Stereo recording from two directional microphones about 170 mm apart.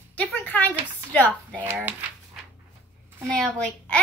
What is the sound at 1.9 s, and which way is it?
Speech, 10° right (ahead or behind).